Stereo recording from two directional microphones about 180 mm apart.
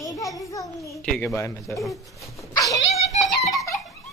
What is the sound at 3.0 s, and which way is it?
Music, 35° left (ahead or behind).